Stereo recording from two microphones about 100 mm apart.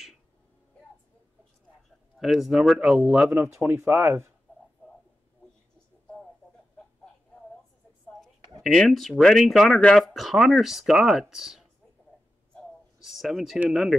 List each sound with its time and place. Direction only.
2.1 s speech: 5° right (ahead or behind); by 4.3 s 20° right (ahead or behind)
8.6 s speech: 5° left (ahead or behind)
13.0 s speech: 5° right (ahead or behind)